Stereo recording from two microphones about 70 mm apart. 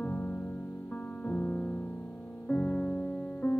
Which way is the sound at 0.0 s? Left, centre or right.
Left.